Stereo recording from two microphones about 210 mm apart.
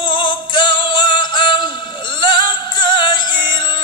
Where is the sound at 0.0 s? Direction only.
20° left (ahead or behind).